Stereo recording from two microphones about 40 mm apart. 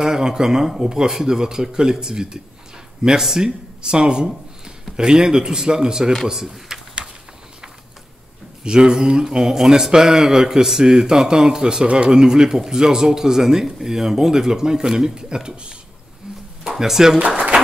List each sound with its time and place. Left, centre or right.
0.0 s a man's voice: centre
8.6 s speech: centre
16.6 s speech: centre